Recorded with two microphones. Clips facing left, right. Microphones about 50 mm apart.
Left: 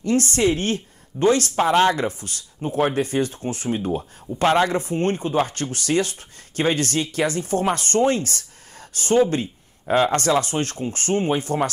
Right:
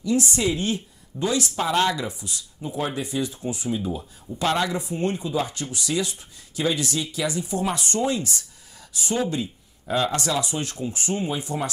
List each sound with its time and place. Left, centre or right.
0.0 s speech: left